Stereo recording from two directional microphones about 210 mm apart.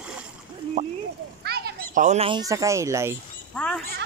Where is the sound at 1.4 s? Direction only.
50° right (ahead or behind).